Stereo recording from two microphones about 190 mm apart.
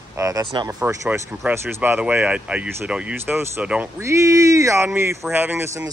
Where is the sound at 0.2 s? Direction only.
15° right (ahead or behind).